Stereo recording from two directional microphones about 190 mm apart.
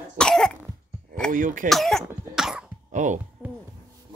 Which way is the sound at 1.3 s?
45° right (ahead or behind).